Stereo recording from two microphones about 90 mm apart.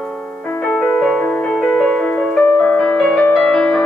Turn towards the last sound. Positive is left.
turn(degrees=5)  # may be behind; listen again after turning